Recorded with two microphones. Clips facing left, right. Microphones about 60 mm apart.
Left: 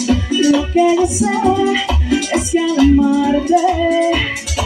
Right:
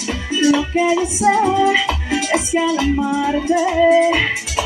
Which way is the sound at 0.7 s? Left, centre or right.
Right.